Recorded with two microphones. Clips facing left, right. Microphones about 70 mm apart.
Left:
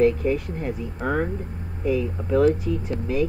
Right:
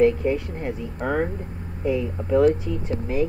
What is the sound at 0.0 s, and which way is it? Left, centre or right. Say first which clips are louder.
Speech: right 1 dB; right.